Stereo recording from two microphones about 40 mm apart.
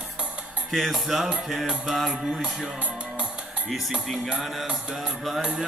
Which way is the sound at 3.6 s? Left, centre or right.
Centre.